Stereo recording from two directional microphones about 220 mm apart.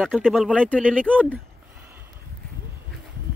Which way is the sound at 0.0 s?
Centre (ahead or behind).